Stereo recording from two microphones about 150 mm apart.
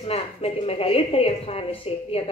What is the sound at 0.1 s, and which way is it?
A woman's voice, 40° left (ahead or behind).